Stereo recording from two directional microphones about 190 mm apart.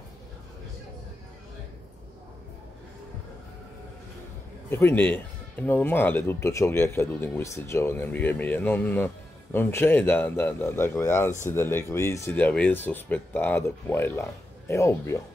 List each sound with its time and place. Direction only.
4.6 s speech: 10° left (ahead or behind)